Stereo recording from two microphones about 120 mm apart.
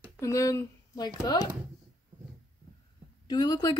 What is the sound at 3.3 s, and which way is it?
Speech, 35° left (ahead or behind).